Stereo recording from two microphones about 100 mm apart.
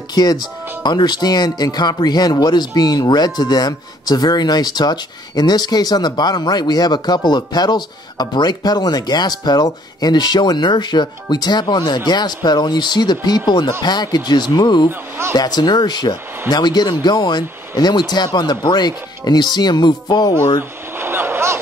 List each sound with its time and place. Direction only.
0.1 s speech: 45° left (ahead or behind)
14.9 s speech: 25° right (ahead or behind)
15.3 s speech: 45° left (ahead or behind)
20.9 s a sound: 20° right (ahead or behind)